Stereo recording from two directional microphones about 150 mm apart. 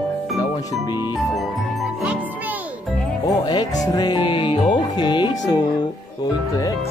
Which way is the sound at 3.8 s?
25° left (ahead or behind).